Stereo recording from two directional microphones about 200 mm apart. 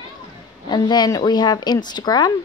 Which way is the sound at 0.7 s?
20° left (ahead or behind).